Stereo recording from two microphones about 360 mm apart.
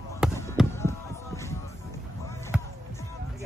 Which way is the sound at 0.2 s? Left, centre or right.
Centre.